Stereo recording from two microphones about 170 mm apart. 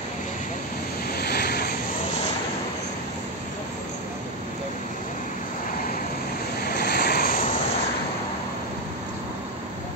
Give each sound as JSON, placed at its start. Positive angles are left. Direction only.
{"t": 1.1, "sound": "waves", "side_deg": 65}
{"t": 6.7, "sound": "vehicle", "side_deg": 70}